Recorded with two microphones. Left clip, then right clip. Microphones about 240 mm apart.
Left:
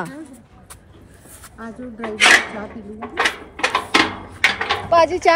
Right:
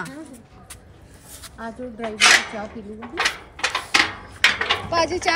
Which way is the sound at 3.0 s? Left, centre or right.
Left.